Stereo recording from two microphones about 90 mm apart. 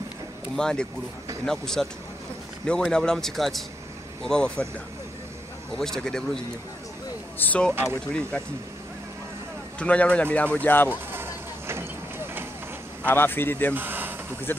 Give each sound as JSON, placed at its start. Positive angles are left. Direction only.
{"t": 0.6, "sound": "a man's voice", "side_deg": 10}
{"t": 5.8, "sound": "a man's voice", "side_deg": 5}
{"t": 7.3, "sound": "speech", "side_deg": 20}
{"t": 7.8, "sound": "speech", "side_deg": 10}
{"t": 9.8, "sound": "speech", "side_deg": 15}
{"t": 11.1, "sound": "a sound", "side_deg": -25}
{"t": 13.0, "sound": "speech", "side_deg": 25}
{"t": 13.7, "sound": "a sound", "side_deg": -20}
{"t": 14.5, "sound": "speech", "side_deg": 25}